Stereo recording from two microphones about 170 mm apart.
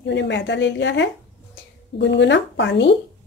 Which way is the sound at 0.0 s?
90° left.